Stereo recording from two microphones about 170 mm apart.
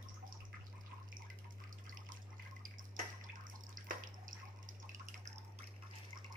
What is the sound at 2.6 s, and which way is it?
Bathtub, 50° right (ahead or behind).